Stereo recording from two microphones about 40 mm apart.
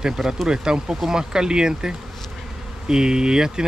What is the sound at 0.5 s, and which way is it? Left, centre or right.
Speech, centre.